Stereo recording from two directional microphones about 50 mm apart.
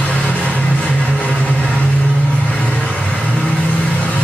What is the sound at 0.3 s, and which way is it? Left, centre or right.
Vehicle, left.